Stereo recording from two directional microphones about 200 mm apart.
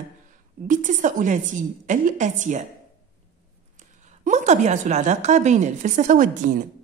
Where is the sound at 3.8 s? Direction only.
35° right (ahead or behind).